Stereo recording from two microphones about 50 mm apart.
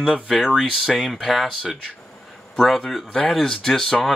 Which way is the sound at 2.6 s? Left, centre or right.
Centre.